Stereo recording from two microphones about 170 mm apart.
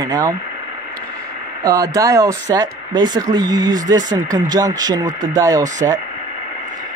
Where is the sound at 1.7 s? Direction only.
20° right (ahead or behind).